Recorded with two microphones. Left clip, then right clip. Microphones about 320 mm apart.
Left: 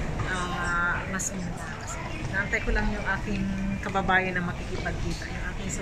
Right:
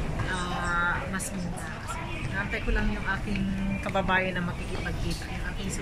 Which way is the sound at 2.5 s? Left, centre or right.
Centre.